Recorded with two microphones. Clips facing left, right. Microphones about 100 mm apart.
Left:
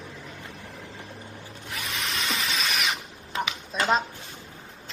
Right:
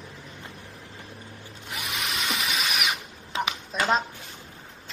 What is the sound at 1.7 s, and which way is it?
Drill, 20° right (ahead or behind).